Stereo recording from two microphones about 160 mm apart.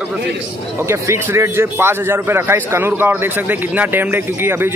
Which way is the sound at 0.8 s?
15° right (ahead or behind).